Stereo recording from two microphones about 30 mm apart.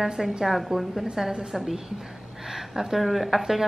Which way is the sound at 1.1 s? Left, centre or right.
Centre.